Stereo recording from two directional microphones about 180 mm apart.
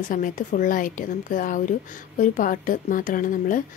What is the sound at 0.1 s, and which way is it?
Speech, 45° left (ahead or behind).